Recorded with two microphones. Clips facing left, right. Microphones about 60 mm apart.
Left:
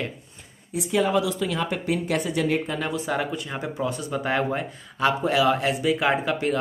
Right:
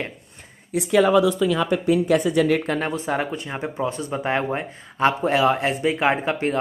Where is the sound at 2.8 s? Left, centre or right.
Right.